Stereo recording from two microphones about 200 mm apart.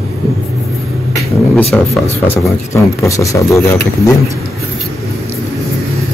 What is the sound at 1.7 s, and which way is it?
Speech, 5° left (ahead or behind).